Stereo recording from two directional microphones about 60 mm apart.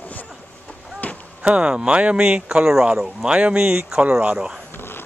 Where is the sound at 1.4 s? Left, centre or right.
Centre.